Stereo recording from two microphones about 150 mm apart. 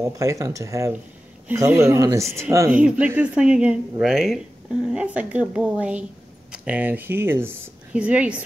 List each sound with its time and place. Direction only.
0.0 s speech: 20° right (ahead or behind)